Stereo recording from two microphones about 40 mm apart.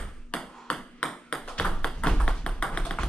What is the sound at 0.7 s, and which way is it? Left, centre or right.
Tap, centre.